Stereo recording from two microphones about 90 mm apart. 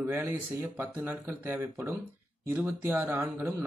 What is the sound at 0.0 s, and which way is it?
Speech, 25° right (ahead or behind).